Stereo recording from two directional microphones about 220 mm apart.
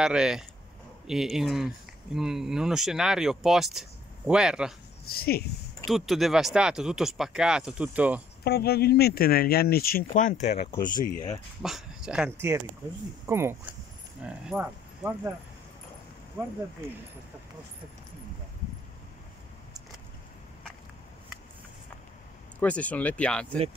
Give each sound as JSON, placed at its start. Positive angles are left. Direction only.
{"t": 0.0, "sound": "speech", "side_deg": -5}
{"t": 5.1, "sound": "speech", "side_deg": 45}
{"t": 5.9, "sound": "speech", "side_deg": 0}
{"t": 8.5, "sound": "speech", "side_deg": 45}
{"t": 11.1, "sound": "speech", "side_deg": 35}
{"t": 11.6, "sound": "speech", "side_deg": 0}
{"t": 22.6, "sound": "speech", "side_deg": 5}